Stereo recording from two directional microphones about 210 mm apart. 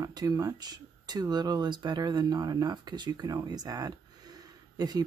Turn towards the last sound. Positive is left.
turn(degrees=-20)  # may be behind; listen again after turning